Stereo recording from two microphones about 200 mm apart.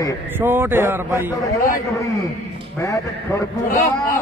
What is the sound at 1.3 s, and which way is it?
A man's voice, 15° left (ahead or behind).